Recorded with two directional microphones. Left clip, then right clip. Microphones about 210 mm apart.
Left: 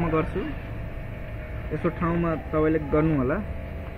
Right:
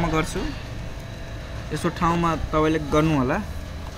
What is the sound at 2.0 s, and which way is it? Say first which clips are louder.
Speech: right 5 dB; 25° right (ahead or behind).